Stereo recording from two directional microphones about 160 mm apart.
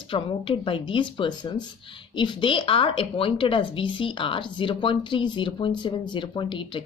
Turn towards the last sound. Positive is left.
turn(degrees=30)  # may be behind; listen again after turning